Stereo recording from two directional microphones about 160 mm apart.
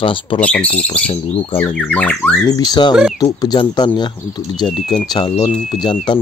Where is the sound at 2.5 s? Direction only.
25° left (ahead or behind).